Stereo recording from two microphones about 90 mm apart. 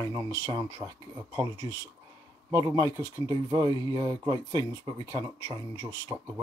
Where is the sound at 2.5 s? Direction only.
40° right (ahead or behind).